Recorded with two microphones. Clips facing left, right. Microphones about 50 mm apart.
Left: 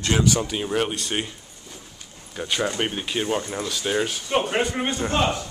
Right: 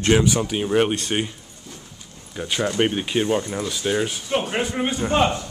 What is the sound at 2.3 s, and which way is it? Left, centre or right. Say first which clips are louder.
Speech: right 1 dB; centre.